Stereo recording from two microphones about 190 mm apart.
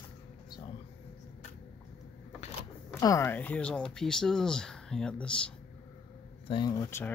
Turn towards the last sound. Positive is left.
turn(degrees=15)  # may be behind; listen again after turning